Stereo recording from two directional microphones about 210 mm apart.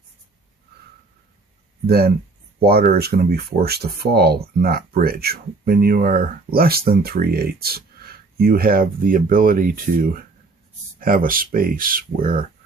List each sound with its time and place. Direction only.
1.9 s speech: 50° right (ahead or behind)